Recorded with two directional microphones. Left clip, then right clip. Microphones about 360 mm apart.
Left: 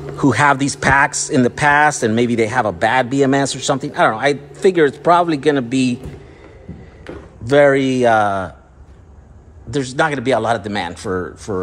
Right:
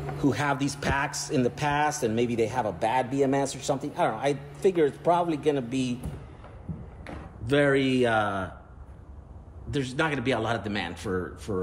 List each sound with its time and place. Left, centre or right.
0.2 s a man's voice: centre
7.4 s a man's voice: centre
9.7 s a man's voice: centre